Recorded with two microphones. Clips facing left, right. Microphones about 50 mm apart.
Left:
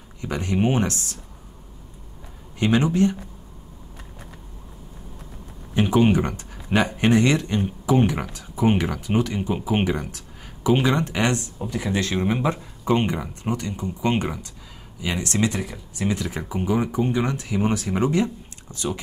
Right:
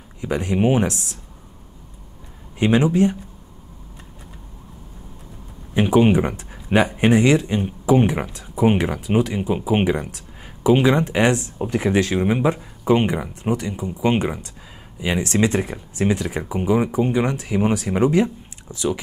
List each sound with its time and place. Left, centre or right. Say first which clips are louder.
0.3 s speech: right 4 dB; centre
2.8 s speech: right 3 dB; centre
5.8 s speech: right 3 dB; centre
7.0 s speech: right 2 dB; centre; by 16.2 s right
16.2 s speech: right 3 dB; centre